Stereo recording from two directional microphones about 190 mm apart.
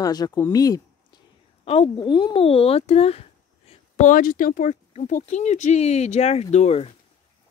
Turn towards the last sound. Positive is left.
turn(degrees=35)  # may be behind; listen again after turning